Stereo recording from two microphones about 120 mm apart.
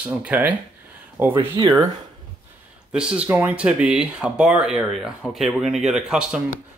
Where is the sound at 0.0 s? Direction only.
10° right (ahead or behind).